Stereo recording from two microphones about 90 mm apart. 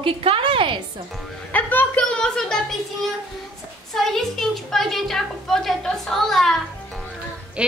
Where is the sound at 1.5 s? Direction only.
20° left (ahead or behind).